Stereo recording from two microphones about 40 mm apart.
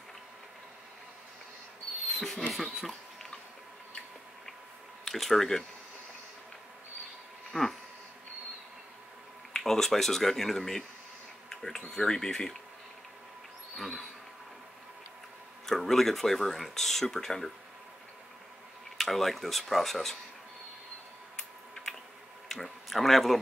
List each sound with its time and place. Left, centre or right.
2.1 s speech: centre
2.4 s speech: centre
5.0 s speech: centre
7.5 s speech: centre
9.5 s speech: centre
11.4 s insect: centre
11.9 s speech: centre
13.7 s a sound: centre
15.6 s speech: centre
18.9 s speech: centre
22.5 s speech: centre